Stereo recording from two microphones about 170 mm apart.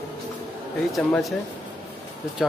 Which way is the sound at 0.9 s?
Centre (ahead or behind).